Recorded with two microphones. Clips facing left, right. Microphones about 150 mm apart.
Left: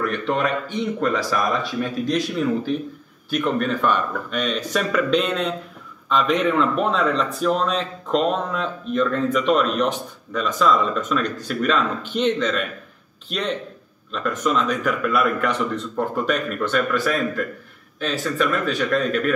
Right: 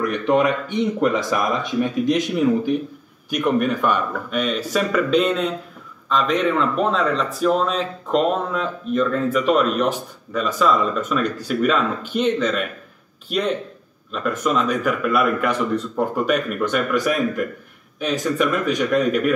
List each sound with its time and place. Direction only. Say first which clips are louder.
0.0 s speech: right 4 dB; 15° right (ahead or behind)